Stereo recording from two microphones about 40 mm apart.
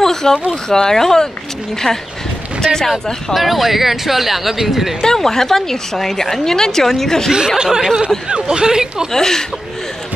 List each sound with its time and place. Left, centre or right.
0.0 s a woman's voice: centre
3.3 s speech: centre
5.0 s a woman's voice: centre
7.4 s speech: centre
9.1 s a woman's voice: centre